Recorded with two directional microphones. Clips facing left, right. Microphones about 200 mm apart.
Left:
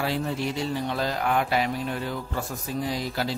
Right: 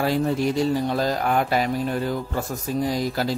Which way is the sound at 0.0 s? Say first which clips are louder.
Right 6 dB; 45° right (ahead or behind).